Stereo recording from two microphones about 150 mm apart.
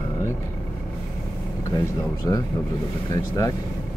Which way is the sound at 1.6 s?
25° left (ahead or behind).